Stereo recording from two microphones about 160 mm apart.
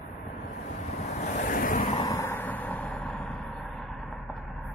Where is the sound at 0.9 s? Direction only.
45° left (ahead or behind).